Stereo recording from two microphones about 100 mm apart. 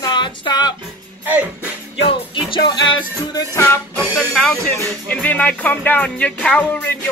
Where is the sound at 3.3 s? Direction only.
30° left (ahead or behind).